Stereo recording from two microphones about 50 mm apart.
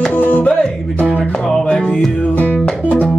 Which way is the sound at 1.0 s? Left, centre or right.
Centre.